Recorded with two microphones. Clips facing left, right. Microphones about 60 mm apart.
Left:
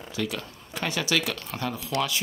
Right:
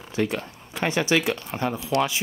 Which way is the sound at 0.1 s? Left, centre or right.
Right.